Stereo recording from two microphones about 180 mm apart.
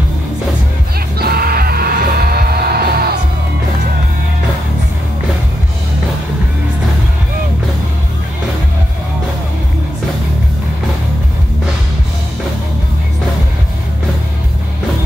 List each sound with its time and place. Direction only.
1.2 s music: 60° right (ahead or behind)